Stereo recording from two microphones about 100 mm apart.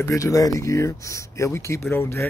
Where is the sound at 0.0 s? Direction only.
30° left (ahead or behind).